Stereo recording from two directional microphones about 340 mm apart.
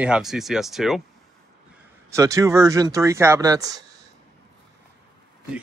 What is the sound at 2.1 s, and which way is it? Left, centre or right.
Speech, centre.